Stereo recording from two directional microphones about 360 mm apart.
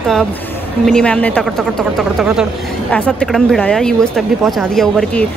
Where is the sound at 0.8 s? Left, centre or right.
Centre.